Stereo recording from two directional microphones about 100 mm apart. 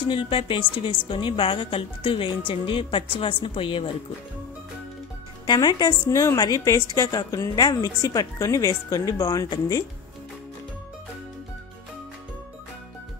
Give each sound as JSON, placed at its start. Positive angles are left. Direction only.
{"t": 0.0, "sound": "a woman's voice", "side_deg": 65}
{"t": 5.5, "sound": "a woman's voice", "side_deg": 40}